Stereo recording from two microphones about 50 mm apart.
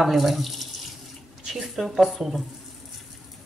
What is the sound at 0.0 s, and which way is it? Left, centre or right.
Speech, centre.